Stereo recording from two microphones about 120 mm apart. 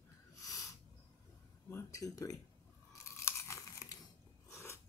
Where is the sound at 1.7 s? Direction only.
25° left (ahead or behind).